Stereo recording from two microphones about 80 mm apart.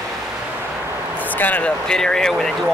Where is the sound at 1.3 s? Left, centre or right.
Left.